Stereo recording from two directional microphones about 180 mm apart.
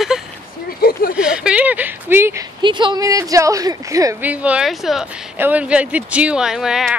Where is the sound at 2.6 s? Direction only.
25° right (ahead or behind).